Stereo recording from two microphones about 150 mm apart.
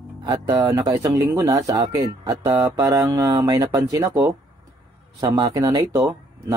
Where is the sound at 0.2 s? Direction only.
25° right (ahead or behind).